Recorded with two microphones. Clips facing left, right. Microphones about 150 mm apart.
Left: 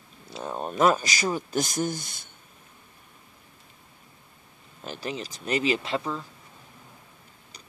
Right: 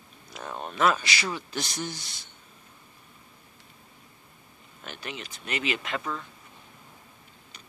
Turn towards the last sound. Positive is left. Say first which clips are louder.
# left 3 dB
turn(degrees=25)  # may be behind; listen again after turning